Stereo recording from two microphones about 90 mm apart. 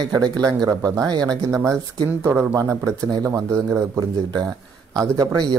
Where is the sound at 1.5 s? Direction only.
35° right (ahead or behind).